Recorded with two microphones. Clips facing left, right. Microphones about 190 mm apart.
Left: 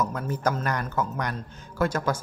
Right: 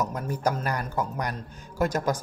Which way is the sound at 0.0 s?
15° right (ahead or behind).